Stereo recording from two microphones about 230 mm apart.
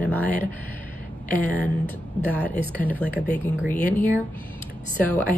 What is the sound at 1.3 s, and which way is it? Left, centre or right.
Speech, centre.